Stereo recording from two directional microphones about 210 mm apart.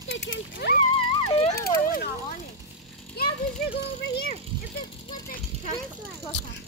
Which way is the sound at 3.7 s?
50° left (ahead or behind).